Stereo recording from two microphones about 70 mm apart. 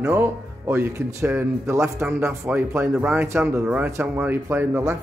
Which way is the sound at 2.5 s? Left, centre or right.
Right.